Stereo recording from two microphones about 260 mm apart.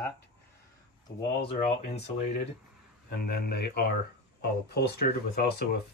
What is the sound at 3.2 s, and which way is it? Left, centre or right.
Speech, left.